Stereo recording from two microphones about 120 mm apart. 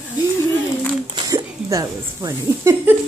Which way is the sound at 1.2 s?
30° right (ahead or behind).